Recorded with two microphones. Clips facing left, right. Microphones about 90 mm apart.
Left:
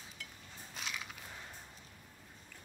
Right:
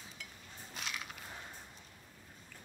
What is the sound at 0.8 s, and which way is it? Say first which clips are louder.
Crushing: even; centre (ahead or behind).